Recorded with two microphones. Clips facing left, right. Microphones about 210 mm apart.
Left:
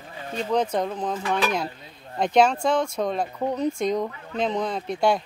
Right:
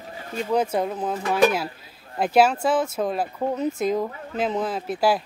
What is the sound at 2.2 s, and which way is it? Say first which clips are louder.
Speech: right 1 dB; 5° right (ahead or behind).